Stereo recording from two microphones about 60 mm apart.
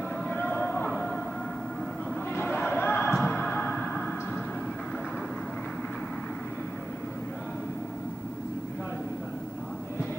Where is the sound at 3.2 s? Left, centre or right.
Left.